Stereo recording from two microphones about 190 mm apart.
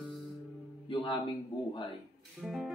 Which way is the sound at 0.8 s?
25° left (ahead or behind).